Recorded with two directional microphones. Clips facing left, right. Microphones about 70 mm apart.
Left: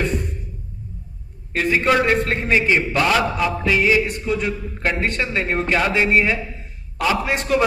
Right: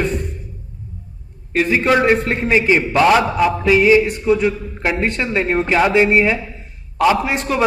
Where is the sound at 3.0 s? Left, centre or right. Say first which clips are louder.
Right 5 dB; right.